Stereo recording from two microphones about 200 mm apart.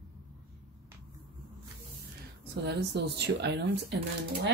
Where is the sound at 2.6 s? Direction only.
55° right (ahead or behind).